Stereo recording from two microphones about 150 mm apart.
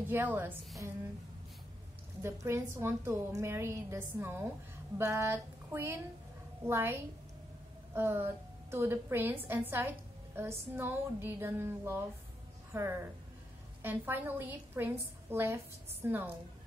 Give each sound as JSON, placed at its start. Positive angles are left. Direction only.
{"t": 0.0, "sound": "a woman's voice", "side_deg": -15}
{"t": 2.2, "sound": "a woman's voice", "side_deg": -15}